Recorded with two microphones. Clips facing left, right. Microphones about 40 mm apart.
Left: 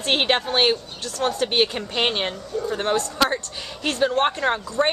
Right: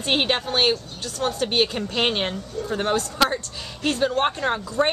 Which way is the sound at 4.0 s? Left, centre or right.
Centre.